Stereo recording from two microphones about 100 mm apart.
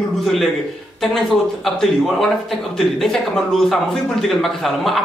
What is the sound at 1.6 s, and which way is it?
Speech, centre (ahead or behind).